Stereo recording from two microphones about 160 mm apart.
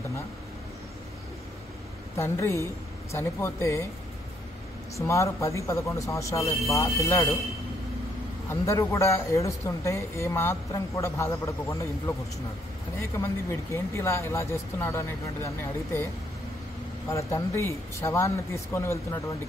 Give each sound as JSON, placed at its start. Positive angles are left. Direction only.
{"t": 2.1, "sound": "speech", "side_deg": 15}
{"t": 4.9, "sound": "a man's voice", "side_deg": 20}
{"t": 8.5, "sound": "speech", "side_deg": 20}
{"t": 13.1, "sound": "speech", "side_deg": 15}
{"t": 17.1, "sound": "speech", "side_deg": 20}